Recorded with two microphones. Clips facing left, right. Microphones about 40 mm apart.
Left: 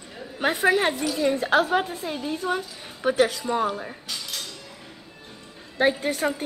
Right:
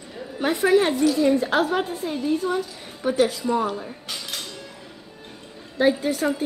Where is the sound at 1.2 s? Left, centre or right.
Left.